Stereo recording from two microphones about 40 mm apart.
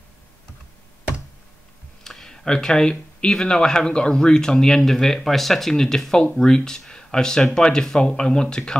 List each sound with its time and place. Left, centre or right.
2.0 s speech: centre